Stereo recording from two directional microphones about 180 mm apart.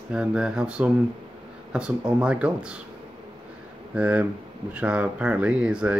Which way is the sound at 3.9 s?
5° right (ahead or behind).